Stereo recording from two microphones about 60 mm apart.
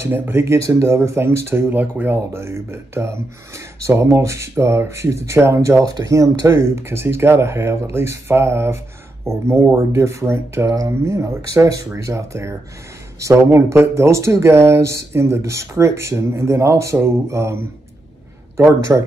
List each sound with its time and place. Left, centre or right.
0.1 s speech: right
0.6 s speech: right
1.7 s speech: right
2.1 s speech: right
18.6 s speech: right